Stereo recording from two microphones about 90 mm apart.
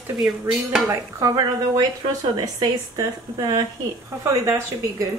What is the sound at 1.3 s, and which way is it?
Speech, 45° right (ahead or behind).